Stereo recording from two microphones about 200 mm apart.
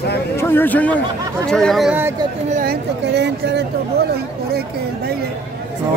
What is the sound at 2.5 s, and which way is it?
Speech, 45° right (ahead or behind).